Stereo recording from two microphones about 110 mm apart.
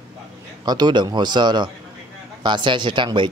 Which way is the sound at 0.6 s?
40° right (ahead or behind).